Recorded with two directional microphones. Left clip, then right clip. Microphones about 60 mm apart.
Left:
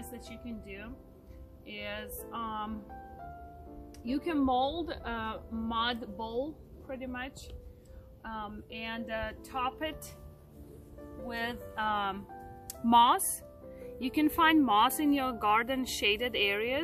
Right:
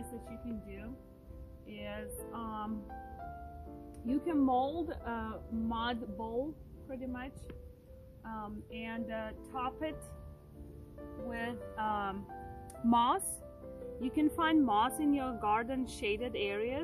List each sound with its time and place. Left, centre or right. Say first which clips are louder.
0.7 s speech: left 3 dB; centre
11.0 s music: even; centre
11.2 s speech: left 4 dB; left
11.7 s speech: left 4 dB; left
12.3 s music: even; centre
12.8 s speech: left 6 dB; left
13.9 s speech: left 4 dB; left